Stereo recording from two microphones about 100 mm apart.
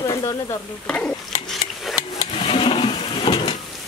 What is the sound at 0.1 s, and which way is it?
Speech, 35° left (ahead or behind).